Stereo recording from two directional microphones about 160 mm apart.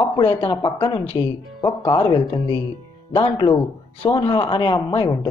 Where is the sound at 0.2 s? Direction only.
30° left (ahead or behind).